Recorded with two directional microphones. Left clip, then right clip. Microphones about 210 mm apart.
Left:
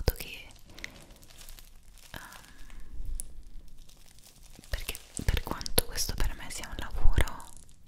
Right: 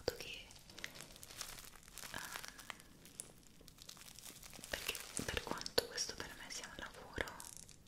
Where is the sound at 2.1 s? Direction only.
15° left (ahead or behind).